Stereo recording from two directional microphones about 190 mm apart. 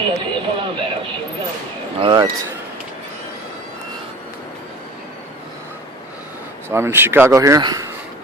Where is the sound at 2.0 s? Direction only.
25° right (ahead or behind).